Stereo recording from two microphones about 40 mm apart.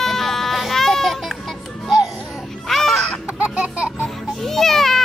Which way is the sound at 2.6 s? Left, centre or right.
Centre.